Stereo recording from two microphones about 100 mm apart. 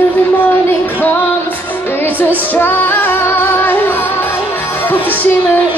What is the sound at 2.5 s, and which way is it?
Music, 20° left (ahead or behind).